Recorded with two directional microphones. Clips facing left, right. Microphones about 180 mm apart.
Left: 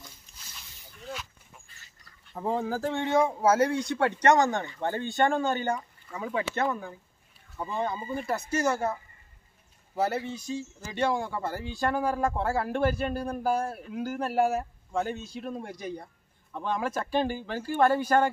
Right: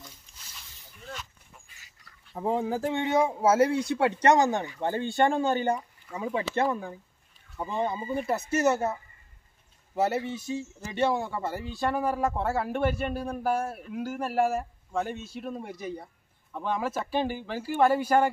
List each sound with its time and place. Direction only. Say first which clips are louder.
0.0 s a sound: right 1 dB; centre (ahead or behind)
1.7 s duck: even; 10° right (ahead or behind)
2.8 s speech: right 1 dB; 20° right (ahead or behind)
3.2 s speech: left 2 dB; 5° right (ahead or behind)
3.4 s speech: right 3 dB; 25° right (ahead or behind)
3.7 s speech: right 1 dB; 5° right (ahead or behind)
4.8 s speech: right 1 dB; 30° right (ahead or behind)
7.7 s speech: right 2 dB; 10° right (ahead or behind)
8.5 s speech: right 2 dB; 25° right (ahead or behind)
9.9 s speech: right 2 dB; 20° right (ahead or behind)
11.0 s speech: right 1 dB; 5° right (ahead or behind)